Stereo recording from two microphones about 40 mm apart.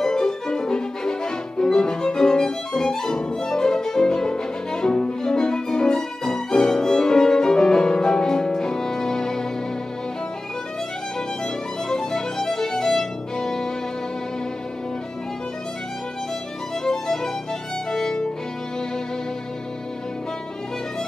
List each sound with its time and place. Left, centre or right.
0.0 s music: centre
11.9 s violin: centre
16.8 s music: centre
17.9 s violin: centre